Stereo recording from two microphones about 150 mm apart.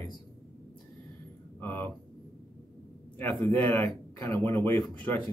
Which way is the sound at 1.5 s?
10° left (ahead or behind).